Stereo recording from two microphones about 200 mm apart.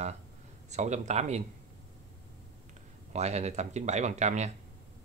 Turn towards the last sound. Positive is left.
turn(degrees=-35)  # may be behind; listen again after turning